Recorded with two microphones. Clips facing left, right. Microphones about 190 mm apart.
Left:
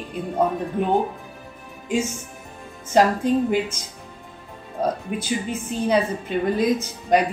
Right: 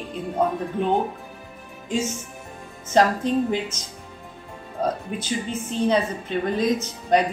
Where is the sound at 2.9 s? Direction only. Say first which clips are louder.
Left 2 dB; 10° left (ahead or behind).